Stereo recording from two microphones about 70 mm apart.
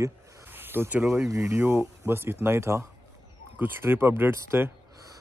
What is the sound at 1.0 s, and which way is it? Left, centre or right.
Speech, right.